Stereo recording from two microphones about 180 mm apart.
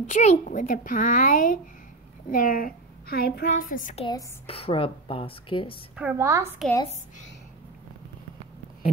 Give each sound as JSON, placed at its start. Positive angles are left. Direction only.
{"t": 0.0, "sound": "a woman's voice", "side_deg": 40}
{"t": 4.0, "sound": "speech", "side_deg": 30}
{"t": 5.9, "sound": "a woman's voice", "side_deg": -10}